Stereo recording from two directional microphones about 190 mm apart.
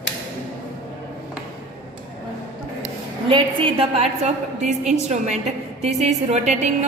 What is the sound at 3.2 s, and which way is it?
A woman's voice, 30° right (ahead or behind).